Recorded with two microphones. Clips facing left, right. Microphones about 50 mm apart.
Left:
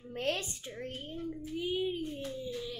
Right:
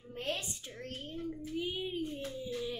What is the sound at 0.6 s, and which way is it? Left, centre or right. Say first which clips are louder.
Speech: left 3 dB; centre.